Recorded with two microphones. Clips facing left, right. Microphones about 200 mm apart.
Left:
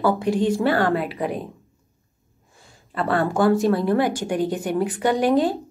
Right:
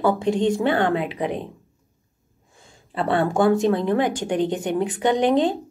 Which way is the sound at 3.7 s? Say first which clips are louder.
Left 1 dB; 20° right (ahead or behind).